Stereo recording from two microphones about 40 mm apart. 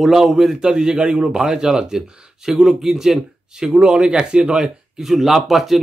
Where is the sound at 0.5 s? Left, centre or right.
Right.